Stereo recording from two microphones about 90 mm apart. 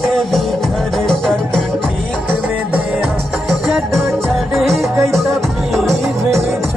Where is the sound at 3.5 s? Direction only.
Centre (ahead or behind).